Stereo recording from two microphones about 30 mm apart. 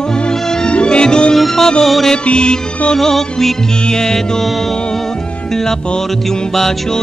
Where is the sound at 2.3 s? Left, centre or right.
Left.